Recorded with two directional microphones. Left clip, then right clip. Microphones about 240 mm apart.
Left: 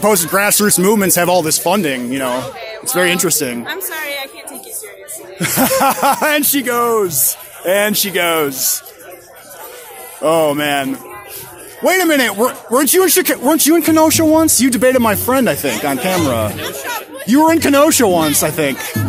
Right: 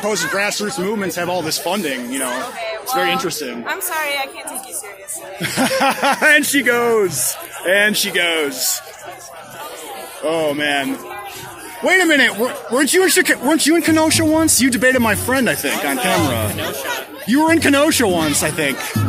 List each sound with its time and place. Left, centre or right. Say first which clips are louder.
0.0 s speech: left 5 dB; left
3.6 s a woman's voice: right 2 dB; centre
5.4 s speech: left 3 dB; left
7.1 s speech: left 2 dB; left
7.6 s speech: even; centre
10.2 s speech: left 5 dB; left
16.6 s speech: even; left
17.3 s speech: left 3 dB; centre